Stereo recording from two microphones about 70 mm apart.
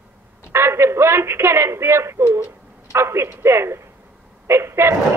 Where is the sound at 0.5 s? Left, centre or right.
Right.